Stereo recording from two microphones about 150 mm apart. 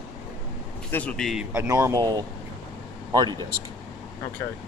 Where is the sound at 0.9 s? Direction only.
5° left (ahead or behind).